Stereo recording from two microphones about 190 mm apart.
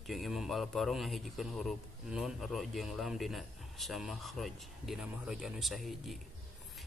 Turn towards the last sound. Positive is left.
turn(degrees=0)  # may be behind; listen again after turning